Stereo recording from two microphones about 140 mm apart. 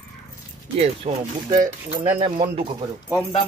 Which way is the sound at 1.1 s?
40° right (ahead or behind).